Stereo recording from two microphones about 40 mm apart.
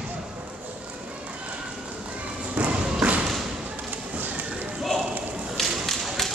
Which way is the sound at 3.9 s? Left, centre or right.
Right.